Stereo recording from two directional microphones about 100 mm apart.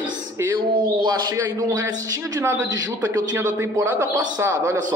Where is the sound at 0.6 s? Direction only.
50° right (ahead or behind).